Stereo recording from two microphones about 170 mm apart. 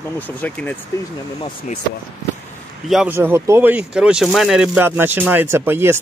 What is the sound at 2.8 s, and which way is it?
Speech, centre (ahead or behind).